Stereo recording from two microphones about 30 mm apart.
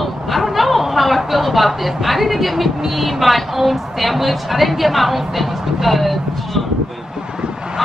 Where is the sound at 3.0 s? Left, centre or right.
Centre.